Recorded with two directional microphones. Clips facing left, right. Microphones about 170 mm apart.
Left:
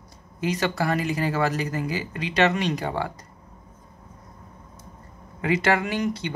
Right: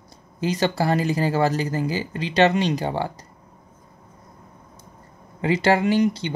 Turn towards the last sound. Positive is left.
turn(degrees=-30)  # may be behind; listen again after turning